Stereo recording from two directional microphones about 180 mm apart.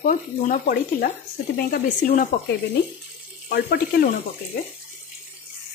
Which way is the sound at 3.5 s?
60° left (ahead or behind).